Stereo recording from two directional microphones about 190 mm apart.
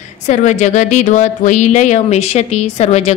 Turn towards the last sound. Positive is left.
turn(degrees=35)  # may be behind; listen again after turning